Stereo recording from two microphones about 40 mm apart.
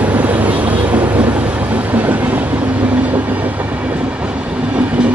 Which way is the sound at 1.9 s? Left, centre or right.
Right.